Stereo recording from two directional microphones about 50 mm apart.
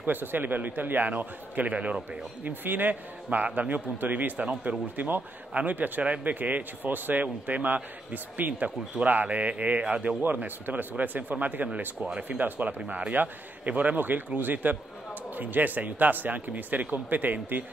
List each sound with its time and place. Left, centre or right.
0.0 s a man's voice: right
2.4 s a man's voice: right